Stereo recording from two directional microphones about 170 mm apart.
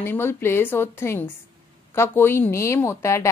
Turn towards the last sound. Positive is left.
turn(degrees=15)  # may be behind; listen again after turning